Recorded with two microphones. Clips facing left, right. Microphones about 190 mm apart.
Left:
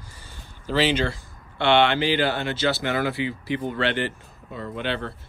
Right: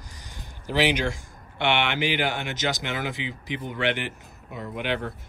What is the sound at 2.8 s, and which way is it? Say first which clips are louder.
Speech: left 6 dB; 15° right (ahead or behind).